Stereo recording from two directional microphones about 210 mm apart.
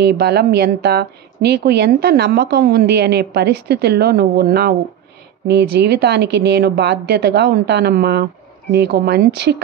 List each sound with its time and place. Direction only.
0.0 s speech: 50° right (ahead or behind)